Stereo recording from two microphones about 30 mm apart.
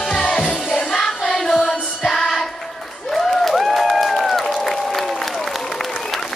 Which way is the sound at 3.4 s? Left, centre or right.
Centre.